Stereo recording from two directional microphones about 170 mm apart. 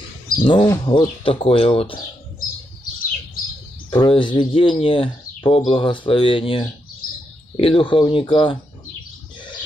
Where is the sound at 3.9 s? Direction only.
30° left (ahead or behind).